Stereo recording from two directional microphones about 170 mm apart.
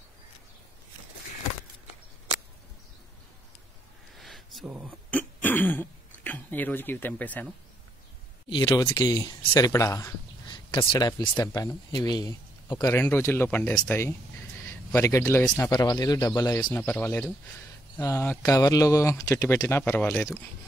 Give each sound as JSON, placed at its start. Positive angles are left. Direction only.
{"t": 4.2, "sound": "a sound", "side_deg": 0}
{"t": 5.1, "sound": "throat clearing", "side_deg": 10}
{"t": 8.5, "sound": "speech", "side_deg": 25}
{"t": 12.9, "sound": "speech", "side_deg": 10}